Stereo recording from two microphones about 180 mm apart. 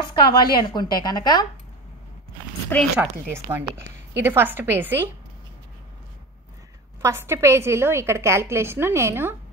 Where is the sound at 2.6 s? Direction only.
10° left (ahead or behind).